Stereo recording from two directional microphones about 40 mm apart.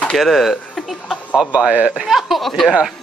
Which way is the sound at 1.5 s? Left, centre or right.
Right.